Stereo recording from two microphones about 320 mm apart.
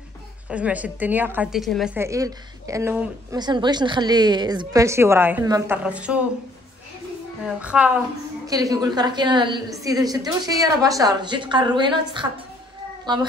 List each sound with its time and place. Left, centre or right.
0.5 s a woman's voice: centre
7.4 s a woman's voice: centre